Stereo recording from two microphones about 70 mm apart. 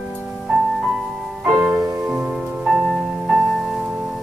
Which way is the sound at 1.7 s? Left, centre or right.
Right.